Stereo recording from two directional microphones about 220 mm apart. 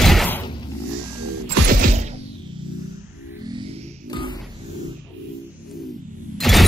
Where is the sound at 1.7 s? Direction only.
35° right (ahead or behind).